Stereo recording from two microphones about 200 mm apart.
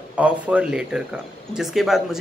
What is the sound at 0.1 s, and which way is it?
Speech, 5° right (ahead or behind).